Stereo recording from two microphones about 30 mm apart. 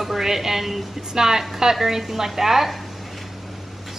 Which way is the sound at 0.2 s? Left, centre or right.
Centre.